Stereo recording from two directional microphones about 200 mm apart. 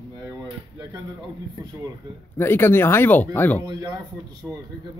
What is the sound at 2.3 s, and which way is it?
Speech, 10° left (ahead or behind).